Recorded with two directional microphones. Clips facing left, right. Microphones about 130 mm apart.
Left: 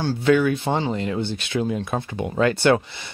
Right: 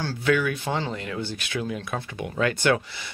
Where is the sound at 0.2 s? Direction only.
30° left (ahead or behind).